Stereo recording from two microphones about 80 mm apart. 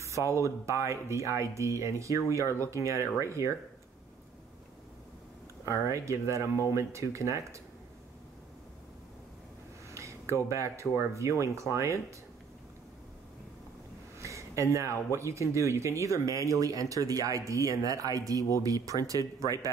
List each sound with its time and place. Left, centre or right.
0.2 s speech: right
5.7 s speech: right
9.8 s speech: right
14.2 s a sound: right
15.1 s speech: right